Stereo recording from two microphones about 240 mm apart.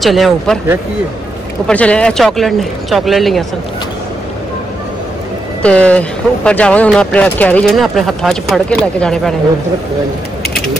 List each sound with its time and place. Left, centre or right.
0.0 s speech: centre
1.7 s speech: centre
5.6 s speech: centre